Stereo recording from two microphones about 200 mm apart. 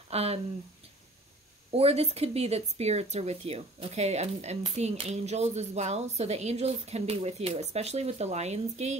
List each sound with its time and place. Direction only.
0.1 s speech: 30° right (ahead or behind)
1.7 s a woman's voice: 30° right (ahead or behind)